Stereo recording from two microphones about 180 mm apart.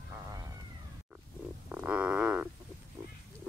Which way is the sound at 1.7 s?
10° right (ahead or behind).